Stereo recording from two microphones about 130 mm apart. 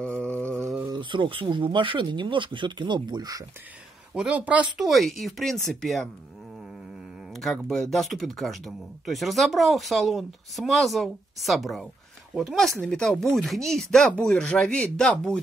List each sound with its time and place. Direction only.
0.0 s a sound: 10° left (ahead or behind)
0.8 s speech: 35° right (ahead or behind)
4.1 s speech: 10° right (ahead or behind)
7.3 s speech: 5° left (ahead or behind)